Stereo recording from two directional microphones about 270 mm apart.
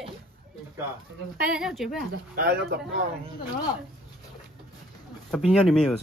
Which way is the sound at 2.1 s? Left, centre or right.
Right.